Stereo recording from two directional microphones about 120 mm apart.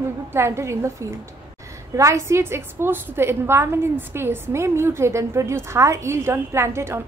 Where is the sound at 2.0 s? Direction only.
25° right (ahead or behind).